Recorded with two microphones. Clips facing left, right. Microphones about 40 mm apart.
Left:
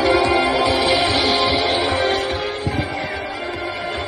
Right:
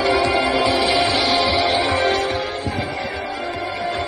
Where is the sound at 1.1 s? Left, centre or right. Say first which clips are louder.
Even; centre.